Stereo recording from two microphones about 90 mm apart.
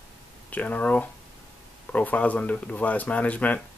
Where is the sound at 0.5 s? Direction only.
15° left (ahead or behind).